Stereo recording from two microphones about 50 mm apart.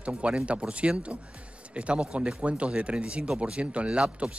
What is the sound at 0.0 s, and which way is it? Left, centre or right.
Speech, right.